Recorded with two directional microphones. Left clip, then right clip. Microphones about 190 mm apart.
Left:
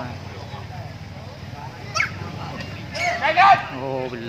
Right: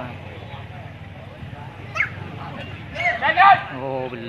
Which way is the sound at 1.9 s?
60° left (ahead or behind).